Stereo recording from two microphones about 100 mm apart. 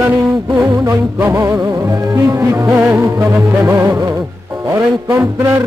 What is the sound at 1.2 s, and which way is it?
Music, 25° right (ahead or behind).